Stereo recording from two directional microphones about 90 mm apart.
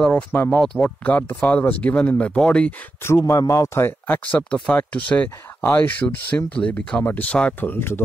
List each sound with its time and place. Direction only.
0.3 s speech: 20° left (ahead or behind)
3.0 s speech: 30° left (ahead or behind)
4.2 s speech: 15° left (ahead or behind)